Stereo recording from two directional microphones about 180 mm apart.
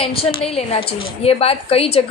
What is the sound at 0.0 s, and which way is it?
A woman's voice, 30° left (ahead or behind).